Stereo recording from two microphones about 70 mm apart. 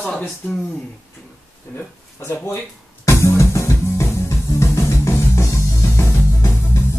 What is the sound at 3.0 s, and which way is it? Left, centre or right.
Music, left.